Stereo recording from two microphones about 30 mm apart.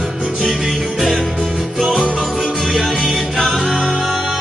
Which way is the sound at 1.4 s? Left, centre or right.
Right.